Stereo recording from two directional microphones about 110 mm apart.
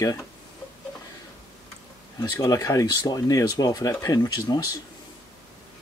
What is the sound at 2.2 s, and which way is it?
Speech, 30° left (ahead or behind).